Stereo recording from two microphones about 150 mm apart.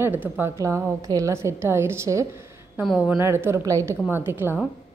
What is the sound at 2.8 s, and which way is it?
Speech, 5° right (ahead or behind).